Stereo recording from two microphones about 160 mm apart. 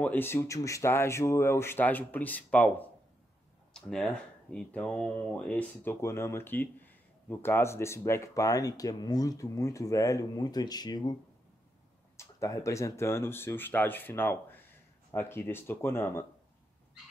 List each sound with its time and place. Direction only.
0.0 s speech: 10° left (ahead or behind)
12.2 s speech: 20° left (ahead or behind)